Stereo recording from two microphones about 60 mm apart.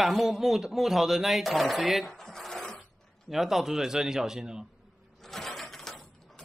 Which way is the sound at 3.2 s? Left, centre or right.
Centre.